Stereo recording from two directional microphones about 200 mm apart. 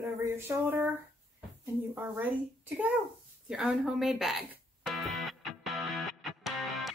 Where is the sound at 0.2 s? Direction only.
10° right (ahead or behind).